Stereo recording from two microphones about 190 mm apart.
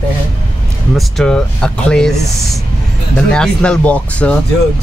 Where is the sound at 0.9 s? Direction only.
5° left (ahead or behind).